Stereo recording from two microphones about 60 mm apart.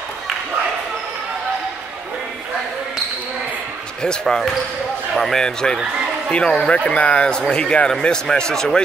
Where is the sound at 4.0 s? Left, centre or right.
Centre.